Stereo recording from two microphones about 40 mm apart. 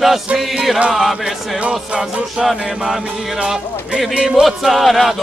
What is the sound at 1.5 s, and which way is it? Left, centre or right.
Music, right.